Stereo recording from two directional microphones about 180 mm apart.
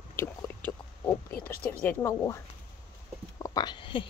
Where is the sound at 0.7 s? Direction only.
10° left (ahead or behind).